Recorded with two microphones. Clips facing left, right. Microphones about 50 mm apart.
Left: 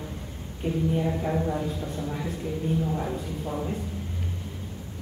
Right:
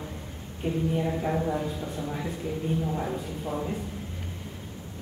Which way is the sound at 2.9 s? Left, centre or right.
Centre.